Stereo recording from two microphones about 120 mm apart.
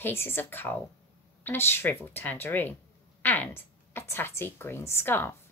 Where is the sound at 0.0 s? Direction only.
20° left (ahead or behind).